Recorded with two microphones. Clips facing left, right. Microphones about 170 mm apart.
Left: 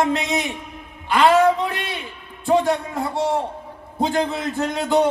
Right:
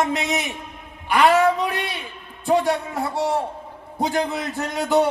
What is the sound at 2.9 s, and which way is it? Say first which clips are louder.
Speech: left 1 dB; 20° left (ahead or behind).